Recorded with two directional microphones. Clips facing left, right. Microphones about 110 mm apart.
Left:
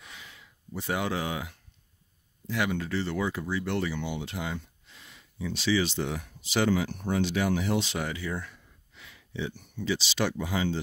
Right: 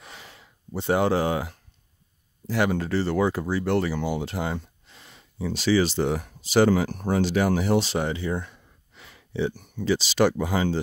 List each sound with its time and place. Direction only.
0.0 s a sound: 40° right (ahead or behind)
2.4 s speech: 40° right (ahead or behind)
8.9 s speech: 40° right (ahead or behind)